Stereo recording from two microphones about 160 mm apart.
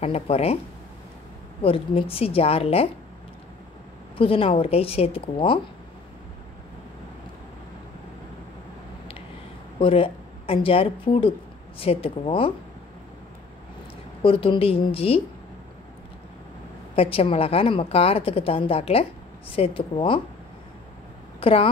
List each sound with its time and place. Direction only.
0.0 s a woman's voice: 40° left (ahead or behind)
1.6 s a woman's voice: 35° left (ahead or behind)
4.2 s a woman's voice: 35° left (ahead or behind)
9.8 s a woman's voice: 35° left (ahead or behind)
14.2 s a woman's voice: 35° left (ahead or behind)
16.9 s a woman's voice: 35° left (ahead or behind)
21.4 s speech: 35° left (ahead or behind)